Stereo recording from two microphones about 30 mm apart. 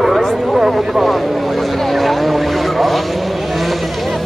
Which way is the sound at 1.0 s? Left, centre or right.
Centre.